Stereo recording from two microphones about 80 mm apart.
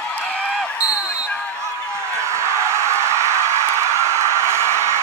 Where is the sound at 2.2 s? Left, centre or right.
Right.